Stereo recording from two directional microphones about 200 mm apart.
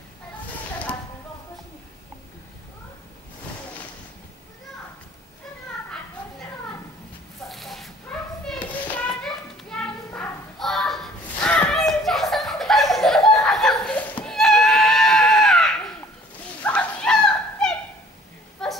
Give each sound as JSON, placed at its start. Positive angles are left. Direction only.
{"t": 7.4, "sound": "dog", "side_deg": 0}
{"t": 8.1, "sound": "children playing", "side_deg": 5}
{"t": 16.6, "sound": "dog", "side_deg": 5}
{"t": 18.6, "sound": "a sound", "side_deg": 5}